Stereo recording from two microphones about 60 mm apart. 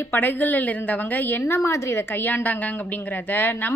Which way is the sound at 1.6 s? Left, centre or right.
Left.